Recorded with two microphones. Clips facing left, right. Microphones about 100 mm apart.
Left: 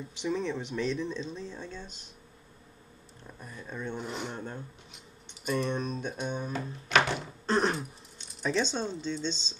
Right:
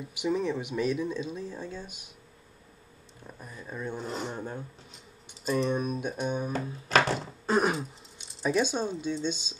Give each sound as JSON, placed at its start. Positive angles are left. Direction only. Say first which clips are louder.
{"t": 0.0, "sound": "speech", "louder": "right 3 dB", "side_deg": -10}
{"t": 3.3, "sound": "speech", "louder": "right 1 dB", "side_deg": -5}
{"t": 4.0, "sound": "speech", "louder": "right 2 dB", "side_deg": -40}
{"t": 4.3, "sound": "speech", "louder": "right 2 dB", "side_deg": -10}
{"t": 5.7, "sound": "speech", "louder": "right 3 dB", "side_deg": -10}
{"t": 6.9, "sound": "music", "louder": "right 2 dB", "side_deg": -35}
{"t": 7.4, "sound": "speech", "louder": "right 2 dB", "side_deg": -10}